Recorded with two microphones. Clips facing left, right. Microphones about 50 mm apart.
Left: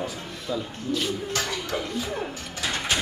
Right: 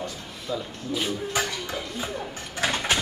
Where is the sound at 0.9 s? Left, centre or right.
Centre.